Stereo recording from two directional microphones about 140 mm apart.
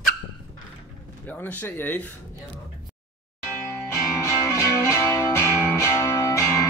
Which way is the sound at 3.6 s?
20° left (ahead or behind).